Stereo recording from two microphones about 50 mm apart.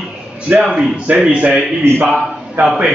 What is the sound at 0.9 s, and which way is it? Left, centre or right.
Speech, right.